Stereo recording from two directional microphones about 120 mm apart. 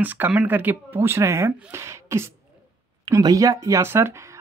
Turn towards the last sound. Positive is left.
turn(degrees=-25)  # may be behind; listen again after turning